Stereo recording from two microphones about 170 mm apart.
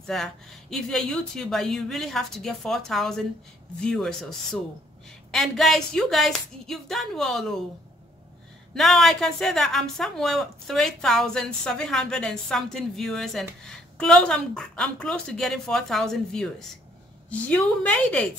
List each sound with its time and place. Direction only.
0.0 s speech: centre (ahead or behind)
8.7 s a woman's voice: centre (ahead or behind)